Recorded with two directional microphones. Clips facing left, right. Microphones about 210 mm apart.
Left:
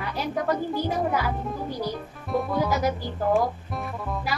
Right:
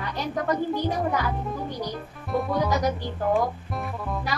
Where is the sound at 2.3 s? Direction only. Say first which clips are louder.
Even; centre (ahead or behind).